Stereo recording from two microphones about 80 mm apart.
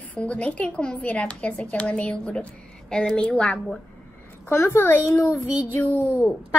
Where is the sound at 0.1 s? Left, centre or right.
Centre.